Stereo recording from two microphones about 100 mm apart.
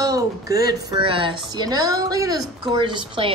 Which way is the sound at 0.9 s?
60° right (ahead or behind).